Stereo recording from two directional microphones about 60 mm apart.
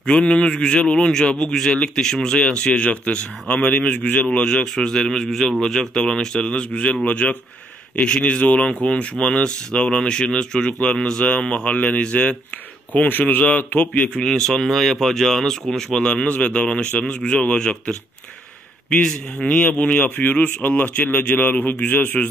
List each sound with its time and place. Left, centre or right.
0.0 s a man's voice: centre
4.6 s a man's voice: centre; by 14.1 s left
14.1 s a man's voice: centre; by 22.3 s left